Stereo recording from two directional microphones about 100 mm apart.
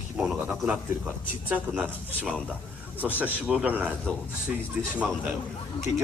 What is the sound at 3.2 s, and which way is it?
Speech, 15° right (ahead or behind).